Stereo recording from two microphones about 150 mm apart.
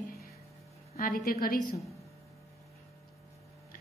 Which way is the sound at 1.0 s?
75° left (ahead or behind).